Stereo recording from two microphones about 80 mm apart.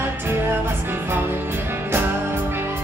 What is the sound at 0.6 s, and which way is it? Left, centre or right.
Music, right.